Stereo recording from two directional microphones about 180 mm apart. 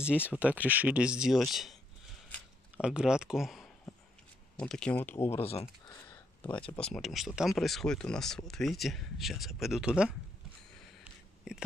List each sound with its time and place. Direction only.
0.3 s speech: 10° right (ahead or behind)
2.8 s speech: 5° right (ahead or behind); by 5.4 s 15° left (ahead or behind)
5.4 s speech: 35° left (ahead or behind)
5.9 s a sound: 10° left (ahead or behind)
6.7 s speech: 5° left (ahead or behind)
11.5 s speech: 5° right (ahead or behind)